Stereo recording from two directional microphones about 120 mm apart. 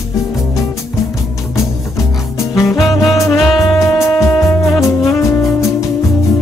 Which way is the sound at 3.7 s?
25° left (ahead or behind).